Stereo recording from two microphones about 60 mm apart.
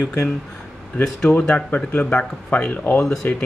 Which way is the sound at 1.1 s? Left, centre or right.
Centre.